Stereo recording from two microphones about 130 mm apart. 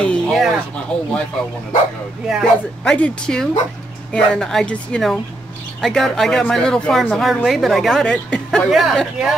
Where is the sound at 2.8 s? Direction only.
10° left (ahead or behind).